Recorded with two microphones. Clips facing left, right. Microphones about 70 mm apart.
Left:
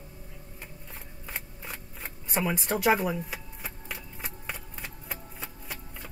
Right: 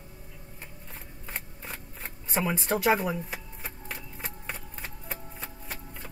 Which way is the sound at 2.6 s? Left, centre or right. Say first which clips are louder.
Even; centre.